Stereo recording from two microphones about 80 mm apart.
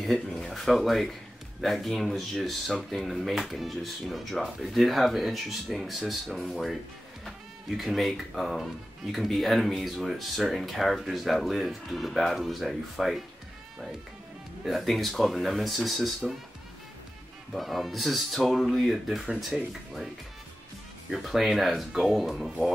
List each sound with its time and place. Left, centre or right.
0.0 s a sound: centre
1.6 s speech: centre
14.6 s speech: centre
17.6 s speech: centre
21.1 s speech: centre